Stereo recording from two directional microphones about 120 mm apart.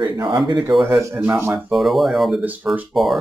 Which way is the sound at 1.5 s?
Centre (ahead or behind).